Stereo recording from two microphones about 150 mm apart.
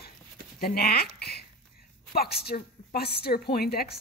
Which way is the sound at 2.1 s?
90° left.